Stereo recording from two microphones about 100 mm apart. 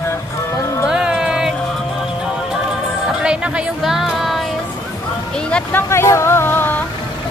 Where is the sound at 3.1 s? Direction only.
10° right (ahead or behind).